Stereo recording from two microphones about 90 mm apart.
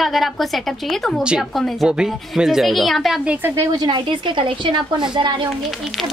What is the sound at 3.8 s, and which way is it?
A woman's voice, 65° right (ahead or behind).